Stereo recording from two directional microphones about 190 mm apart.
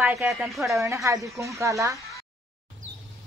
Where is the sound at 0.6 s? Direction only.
15° right (ahead or behind).